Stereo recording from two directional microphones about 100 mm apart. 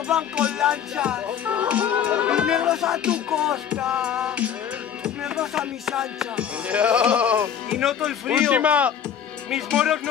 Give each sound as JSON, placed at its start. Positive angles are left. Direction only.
{"t": 0.1, "sound": "music", "side_deg": -10}
{"t": 9.7, "sound": "speech", "side_deg": 0}